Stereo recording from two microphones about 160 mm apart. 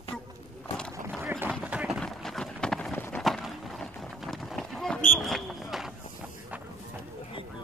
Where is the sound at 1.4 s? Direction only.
10° right (ahead or behind).